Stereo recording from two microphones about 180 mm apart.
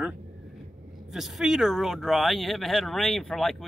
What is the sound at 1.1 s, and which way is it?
Speech, centre (ahead or behind).